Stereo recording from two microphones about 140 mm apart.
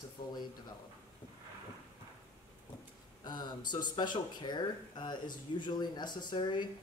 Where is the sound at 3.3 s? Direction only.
30° left (ahead or behind).